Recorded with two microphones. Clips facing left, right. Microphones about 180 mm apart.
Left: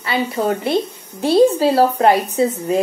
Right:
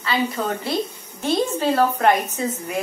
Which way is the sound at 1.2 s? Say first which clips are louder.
Left 8 dB; 35° left (ahead or behind).